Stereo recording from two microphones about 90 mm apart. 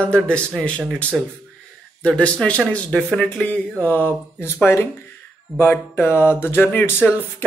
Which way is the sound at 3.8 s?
20° left (ahead or behind).